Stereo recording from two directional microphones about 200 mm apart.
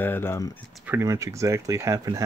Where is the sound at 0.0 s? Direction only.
10° left (ahead or behind).